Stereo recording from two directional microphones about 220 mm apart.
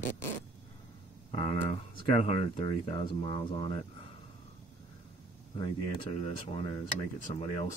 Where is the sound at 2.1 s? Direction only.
30° left (ahead or behind).